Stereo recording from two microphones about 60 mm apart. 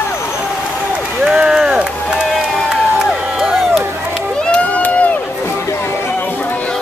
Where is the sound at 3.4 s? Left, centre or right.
Centre.